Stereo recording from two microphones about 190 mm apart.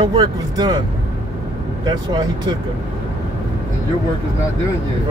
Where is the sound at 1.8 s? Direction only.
20° right (ahead or behind).